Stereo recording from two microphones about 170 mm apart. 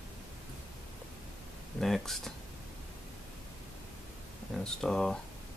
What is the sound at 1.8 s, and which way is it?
Speech, centre (ahead or behind).